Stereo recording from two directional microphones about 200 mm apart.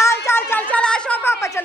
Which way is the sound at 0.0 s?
15° left (ahead or behind).